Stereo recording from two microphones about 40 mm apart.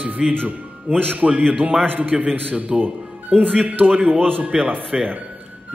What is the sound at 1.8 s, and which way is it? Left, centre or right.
A man's voice, right.